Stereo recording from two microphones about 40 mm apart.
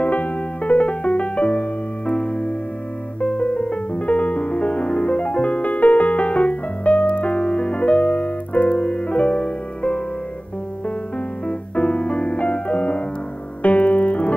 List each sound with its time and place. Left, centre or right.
0.0 s music: left
11.4 s music: left